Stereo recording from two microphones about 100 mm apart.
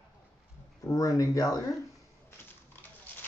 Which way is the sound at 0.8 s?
35° left (ahead or behind).